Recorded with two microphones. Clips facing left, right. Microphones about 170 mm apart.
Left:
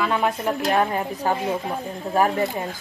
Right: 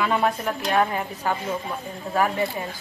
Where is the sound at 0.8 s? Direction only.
25° left (ahead or behind).